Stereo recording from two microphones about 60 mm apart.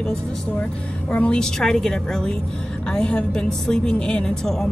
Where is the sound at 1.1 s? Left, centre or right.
Centre.